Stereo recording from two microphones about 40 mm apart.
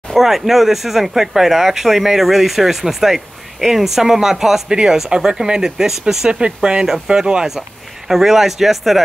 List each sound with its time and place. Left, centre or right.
0.1 s speech: centre; by 7.4 s right
8.1 s speech: centre